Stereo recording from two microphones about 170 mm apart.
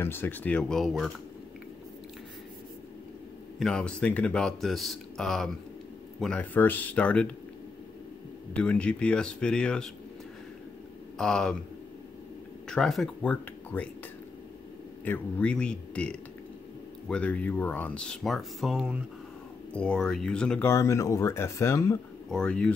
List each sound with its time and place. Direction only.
0.0 s speech: 15° left (ahead or behind)
3.5 s speech: 5° left (ahead or behind)
8.5 s speech: 5° left (ahead or behind)
11.1 s speech: 5° left (ahead or behind)
12.6 s speech: 5° left (ahead or behind)
15.0 s speech: 10° left (ahead or behind)
22.3 s speech: 5° left (ahead or behind)